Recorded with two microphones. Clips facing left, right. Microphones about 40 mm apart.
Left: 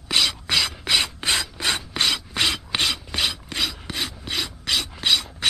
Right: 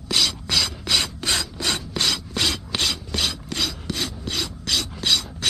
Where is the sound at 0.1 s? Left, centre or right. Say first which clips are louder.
Left 1 dB; centre.